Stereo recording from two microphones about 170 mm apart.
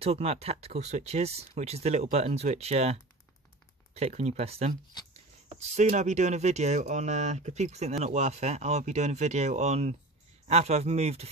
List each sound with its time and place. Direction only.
0.0 s speech: 35° right (ahead or behind)